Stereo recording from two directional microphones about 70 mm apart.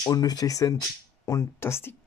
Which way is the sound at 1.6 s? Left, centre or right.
Left.